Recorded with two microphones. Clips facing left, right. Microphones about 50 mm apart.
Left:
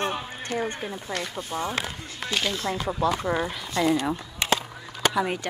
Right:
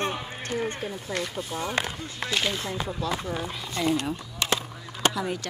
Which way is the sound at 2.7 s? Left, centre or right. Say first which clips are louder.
Left 5 dB; left.